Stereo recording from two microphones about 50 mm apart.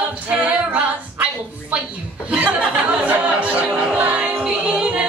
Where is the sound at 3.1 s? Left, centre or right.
Right.